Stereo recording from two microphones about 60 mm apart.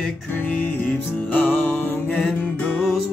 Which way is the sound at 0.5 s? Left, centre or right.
Left.